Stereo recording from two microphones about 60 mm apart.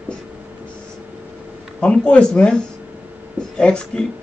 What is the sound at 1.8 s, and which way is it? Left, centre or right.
Speech, centre.